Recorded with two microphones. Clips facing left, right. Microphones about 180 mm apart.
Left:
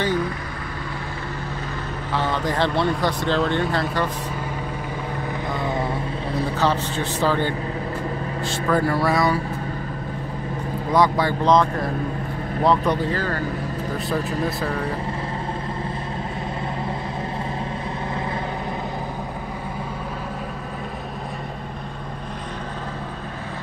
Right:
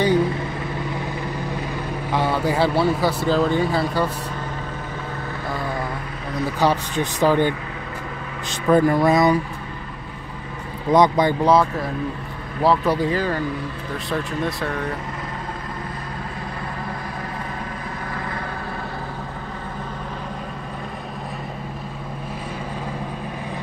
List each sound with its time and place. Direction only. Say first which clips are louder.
2.1 s speech: right 3 dB; 10° right (ahead or behind)
6.6 s speech: right 4 dB; 15° right (ahead or behind)
10.9 s speech: right 3 dB; 20° right (ahead or behind)
12.6 s speech: right 1 dB; 5° right (ahead or behind)
14.1 s speech: right 1 dB; centre (ahead or behind)